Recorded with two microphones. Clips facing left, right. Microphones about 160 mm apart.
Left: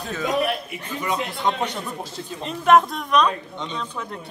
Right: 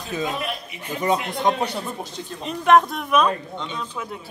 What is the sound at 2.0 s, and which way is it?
Speech, centre (ahead or behind).